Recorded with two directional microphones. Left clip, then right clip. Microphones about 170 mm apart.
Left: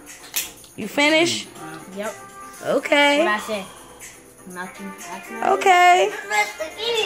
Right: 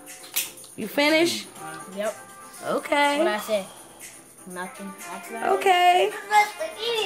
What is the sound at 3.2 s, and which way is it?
Speech, 25° right (ahead or behind).